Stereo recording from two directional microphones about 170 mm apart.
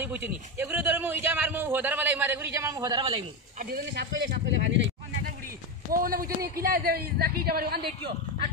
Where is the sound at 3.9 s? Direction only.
85° right.